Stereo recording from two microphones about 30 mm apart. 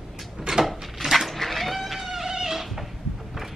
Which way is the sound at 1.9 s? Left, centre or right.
Centre.